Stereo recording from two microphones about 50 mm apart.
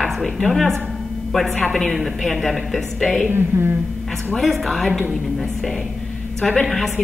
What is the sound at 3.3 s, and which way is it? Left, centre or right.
Speech, right.